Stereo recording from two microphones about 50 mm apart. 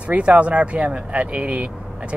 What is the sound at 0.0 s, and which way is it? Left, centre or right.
Speech, right.